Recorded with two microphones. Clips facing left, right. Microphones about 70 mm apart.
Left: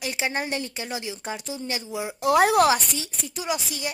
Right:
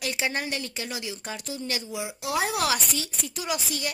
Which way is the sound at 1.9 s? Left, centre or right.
Left.